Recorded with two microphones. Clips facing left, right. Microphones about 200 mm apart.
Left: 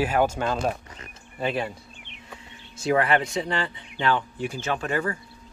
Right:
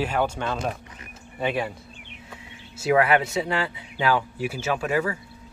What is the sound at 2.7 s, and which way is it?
Speech, 5° right (ahead or behind).